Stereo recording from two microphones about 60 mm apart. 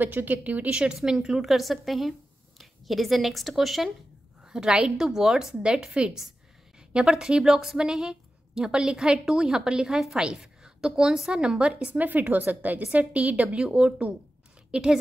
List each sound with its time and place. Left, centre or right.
0.0 s a woman's voice: right; by 3.9 s centre
4.5 s a woman's voice: centre
11.9 s a woman's voice: right; by 15.0 s centre